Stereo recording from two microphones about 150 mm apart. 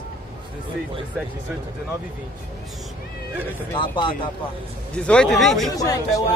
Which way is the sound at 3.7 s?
35° left (ahead or behind).